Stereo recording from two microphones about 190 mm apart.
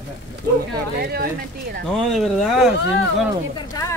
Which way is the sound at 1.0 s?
55° right (ahead or behind).